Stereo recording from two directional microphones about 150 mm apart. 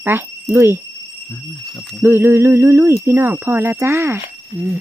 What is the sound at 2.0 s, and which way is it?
Speech, 15° right (ahead or behind).